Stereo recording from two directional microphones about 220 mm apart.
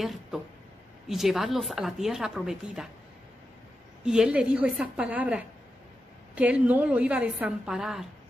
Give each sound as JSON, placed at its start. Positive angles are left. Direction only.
{"t": 0.0, "sound": "a woman's voice", "side_deg": 0}
{"t": 4.0, "sound": "a woman's voice", "side_deg": -5}